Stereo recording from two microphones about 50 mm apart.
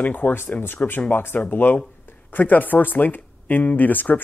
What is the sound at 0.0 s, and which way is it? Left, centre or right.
Speech, left.